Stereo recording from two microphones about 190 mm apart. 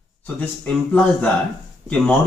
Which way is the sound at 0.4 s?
5° left (ahead or behind).